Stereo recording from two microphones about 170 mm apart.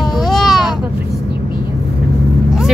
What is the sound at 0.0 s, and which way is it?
Baby cry, centre (ahead or behind).